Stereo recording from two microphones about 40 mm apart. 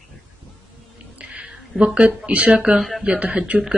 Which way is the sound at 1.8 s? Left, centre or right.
Right.